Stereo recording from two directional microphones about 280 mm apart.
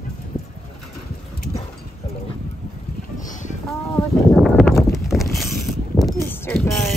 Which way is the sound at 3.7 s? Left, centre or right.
Centre.